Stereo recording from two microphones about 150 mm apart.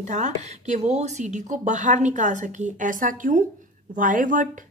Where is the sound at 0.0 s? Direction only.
50° right (ahead or behind).